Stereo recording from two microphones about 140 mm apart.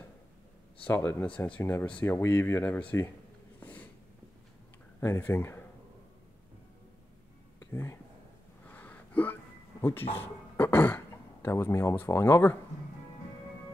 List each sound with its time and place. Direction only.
0.8 s speech: 15° left (ahead or behind)
3.5 s a sound: 10° left (ahead or behind)
5.0 s speech: 20° left (ahead or behind)
7.7 s speech: 20° left (ahead or behind)
8.6 s a sound: 10° left (ahead or behind)
10.1 s beatboxing: 15° left (ahead or behind)
11.4 s speech: 20° left (ahead or behind)